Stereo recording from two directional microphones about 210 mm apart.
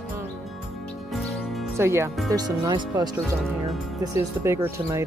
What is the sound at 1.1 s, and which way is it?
Music, centre (ahead or behind).